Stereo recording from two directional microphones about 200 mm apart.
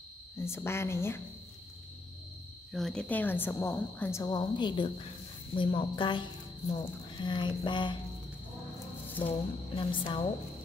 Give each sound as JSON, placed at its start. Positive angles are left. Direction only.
{"t": 0.4, "sound": "a woman's voice", "side_deg": 10}
{"t": 2.7, "sound": "a woman's voice", "side_deg": 0}
{"t": 9.3, "sound": "speech", "side_deg": 25}